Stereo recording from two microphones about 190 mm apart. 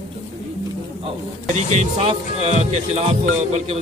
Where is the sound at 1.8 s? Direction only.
35° right (ahead or behind).